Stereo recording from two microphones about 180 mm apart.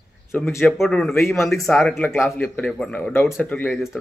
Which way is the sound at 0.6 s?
Centre (ahead or behind).